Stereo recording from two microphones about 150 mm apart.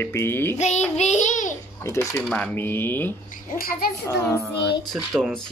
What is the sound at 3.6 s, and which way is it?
Speech, 80° left.